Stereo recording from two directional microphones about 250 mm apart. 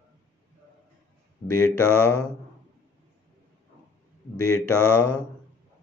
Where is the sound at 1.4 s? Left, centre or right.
Left.